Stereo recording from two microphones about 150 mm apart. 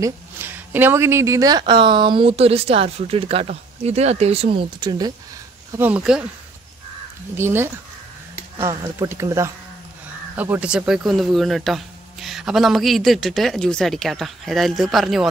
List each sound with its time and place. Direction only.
0.0 s speech: 15° right (ahead or behind)
5.8 s speech: 10° right (ahead or behind)
7.3 s speech: 15° right (ahead or behind); by 15.2 s centre (ahead or behind)